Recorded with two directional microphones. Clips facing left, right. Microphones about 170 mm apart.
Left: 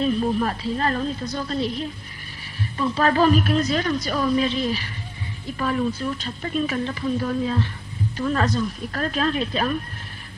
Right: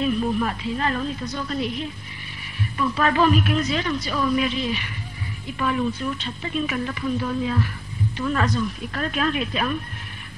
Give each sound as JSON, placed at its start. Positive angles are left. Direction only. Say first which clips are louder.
{"t": 0.0, "sound": "a woman's voice", "louder": "left 1 dB", "side_deg": 40}